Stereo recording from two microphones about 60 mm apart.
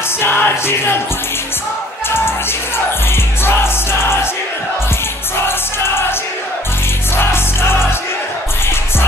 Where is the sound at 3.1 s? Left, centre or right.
Left.